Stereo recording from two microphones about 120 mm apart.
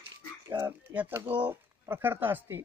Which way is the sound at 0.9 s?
15° right (ahead or behind).